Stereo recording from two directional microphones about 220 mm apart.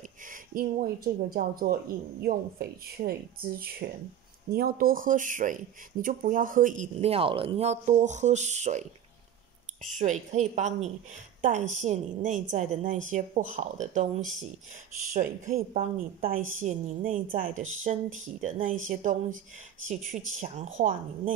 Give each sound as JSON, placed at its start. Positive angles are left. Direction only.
{"t": 0.3, "sound": "speech", "side_deg": -40}
{"t": 9.9, "sound": "speech", "side_deg": -35}
{"t": 15.1, "sound": "speech", "side_deg": -35}